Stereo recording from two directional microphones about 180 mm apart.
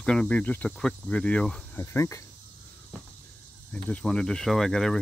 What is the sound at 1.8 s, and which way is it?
Speech, 15° left (ahead or behind).